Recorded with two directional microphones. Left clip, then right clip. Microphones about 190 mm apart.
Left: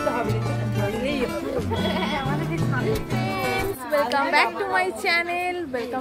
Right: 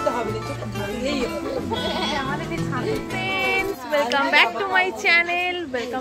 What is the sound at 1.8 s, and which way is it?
Speech, centre (ahead or behind).